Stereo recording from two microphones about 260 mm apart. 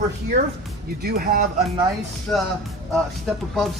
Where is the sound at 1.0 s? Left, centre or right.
Right.